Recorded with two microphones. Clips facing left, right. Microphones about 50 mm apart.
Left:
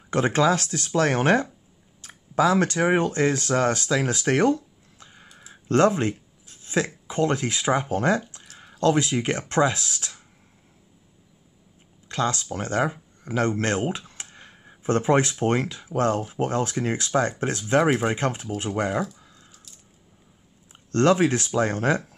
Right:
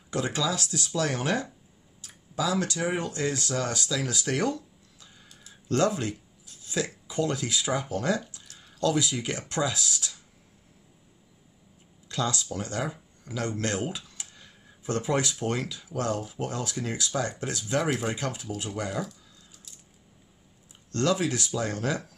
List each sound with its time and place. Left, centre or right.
0.1 s speech: left
5.5 s a sound: left
7.1 s speech: left
12.1 s speech: left
20.9 s speech: left